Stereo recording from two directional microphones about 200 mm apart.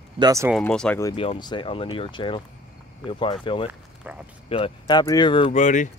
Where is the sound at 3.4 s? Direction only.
25° left (ahead or behind).